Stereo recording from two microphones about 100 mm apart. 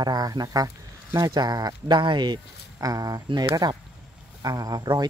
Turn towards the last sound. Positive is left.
turn(degrees=-40)  # may be behind; listen again after turning